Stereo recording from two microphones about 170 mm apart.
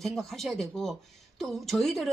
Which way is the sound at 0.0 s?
Centre (ahead or behind).